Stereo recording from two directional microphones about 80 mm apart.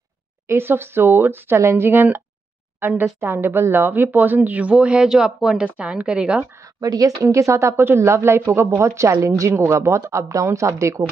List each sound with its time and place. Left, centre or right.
0.5 s a woman's voice: right; by 6.4 s centre
6.6 s speech: right
7.2 s speech: right